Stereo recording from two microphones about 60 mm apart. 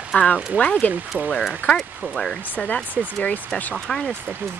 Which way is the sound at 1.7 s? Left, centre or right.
Centre.